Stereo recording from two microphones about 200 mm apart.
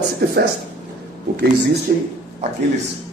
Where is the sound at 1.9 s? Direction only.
50° right (ahead or behind).